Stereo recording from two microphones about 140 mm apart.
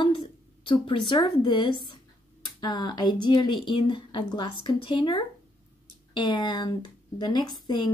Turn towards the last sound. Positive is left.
turn(degrees=30)  # may be behind; listen again after turning